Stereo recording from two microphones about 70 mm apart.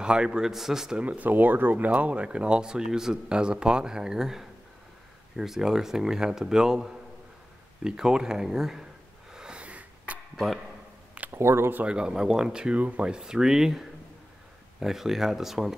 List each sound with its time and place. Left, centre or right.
0.0 s speech: centre
1.0 s speech: right; by 8.8 s centre
9.3 s a sound: centre
10.3 s speech: centre
11.3 s speech: right
11.8 s speech: centre